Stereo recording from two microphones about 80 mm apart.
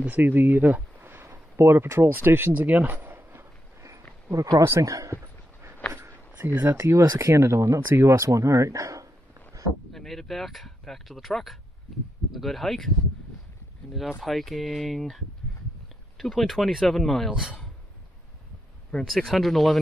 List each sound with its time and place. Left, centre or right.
0.0 s speech: right
4.3 s speech: right
5.2 s a sound: right
5.9 s speech: right
9.9 s a man's voice: centre
14.2 s a man's voice: centre
18.9 s a man's voice: centre